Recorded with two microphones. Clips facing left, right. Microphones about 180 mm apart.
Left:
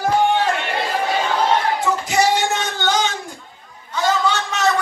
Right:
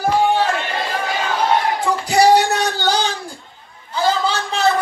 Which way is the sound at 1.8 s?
35° right (ahead or behind).